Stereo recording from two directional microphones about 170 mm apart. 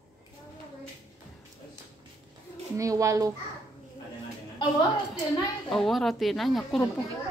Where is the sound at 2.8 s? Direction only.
20° right (ahead or behind).